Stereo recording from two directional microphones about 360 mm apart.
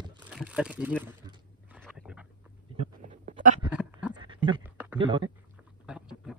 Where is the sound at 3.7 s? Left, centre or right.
Centre.